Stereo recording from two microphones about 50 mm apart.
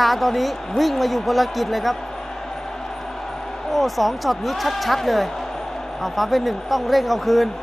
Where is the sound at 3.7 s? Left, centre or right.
Centre.